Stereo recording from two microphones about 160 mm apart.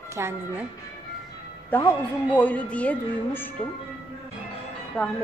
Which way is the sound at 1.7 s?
10° left (ahead or behind).